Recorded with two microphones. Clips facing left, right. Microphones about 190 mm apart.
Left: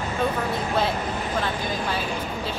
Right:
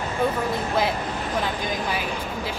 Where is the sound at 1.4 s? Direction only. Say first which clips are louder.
Even; 15° right (ahead or behind).